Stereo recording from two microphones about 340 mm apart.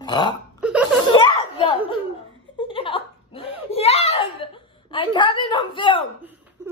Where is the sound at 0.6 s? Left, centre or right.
Centre.